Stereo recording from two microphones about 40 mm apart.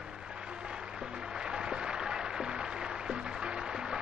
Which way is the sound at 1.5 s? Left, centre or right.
Centre.